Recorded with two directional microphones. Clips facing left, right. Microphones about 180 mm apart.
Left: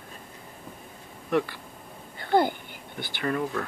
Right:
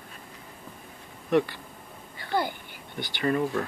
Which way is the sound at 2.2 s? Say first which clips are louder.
Left 6 dB; 50° left (ahead or behind).